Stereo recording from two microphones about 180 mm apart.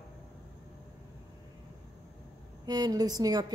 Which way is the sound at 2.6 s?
20° right (ahead or behind).